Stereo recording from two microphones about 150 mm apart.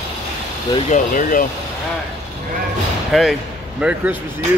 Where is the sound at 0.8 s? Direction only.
60° left (ahead or behind).